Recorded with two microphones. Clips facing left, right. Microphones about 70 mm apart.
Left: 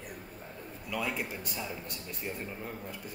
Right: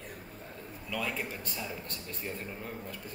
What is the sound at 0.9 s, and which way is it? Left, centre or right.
A man's voice, centre.